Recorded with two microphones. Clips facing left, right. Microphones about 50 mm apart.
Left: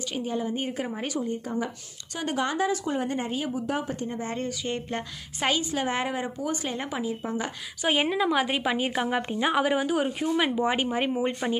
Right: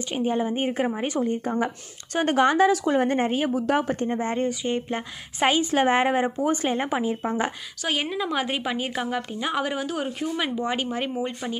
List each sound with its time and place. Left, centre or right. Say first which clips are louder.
0.1 s a woman's voice: right 5 dB; right
1.2 s speech: right 5 dB; right
3.0 s speech: right 6 dB; right
3.5 s speech: right 6 dB; right
4.0 s a woman's voice: right 6 dB; right
4.3 s speech: right 6 dB; right
4.6 s a woman's voice: right 4 dB; centre
5.7 s a woman's voice: right 7 dB; right
7.8 s a woman's voice: left 3 dB; centre